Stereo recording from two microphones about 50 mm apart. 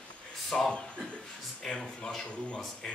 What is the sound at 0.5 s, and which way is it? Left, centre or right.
Speech, centre.